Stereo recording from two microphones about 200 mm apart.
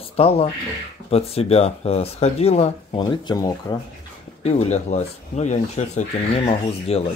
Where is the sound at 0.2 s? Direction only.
30° left (ahead or behind).